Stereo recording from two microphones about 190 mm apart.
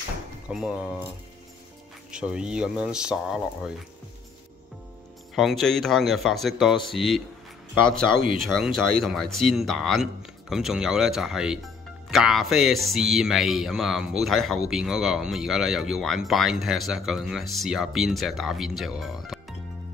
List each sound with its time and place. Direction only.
0.5 s speech: 5° right (ahead or behind)
2.0 s speech: 5° right (ahead or behind)
5.3 s speech: centre (ahead or behind)
7.9 s speech: 50° right (ahead or behind)
8.4 s speech: centre (ahead or behind)